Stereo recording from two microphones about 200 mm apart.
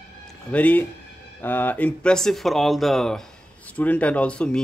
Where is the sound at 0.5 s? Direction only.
5° left (ahead or behind).